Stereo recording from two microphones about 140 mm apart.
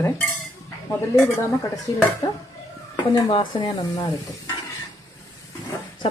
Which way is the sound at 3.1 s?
35° left (ahead or behind).